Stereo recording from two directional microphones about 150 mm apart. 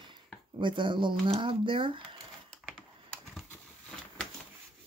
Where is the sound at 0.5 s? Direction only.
35° right (ahead or behind).